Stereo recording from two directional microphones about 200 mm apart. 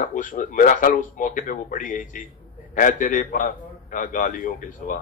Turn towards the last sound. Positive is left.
turn(degrees=40)  # may be behind; listen again after turning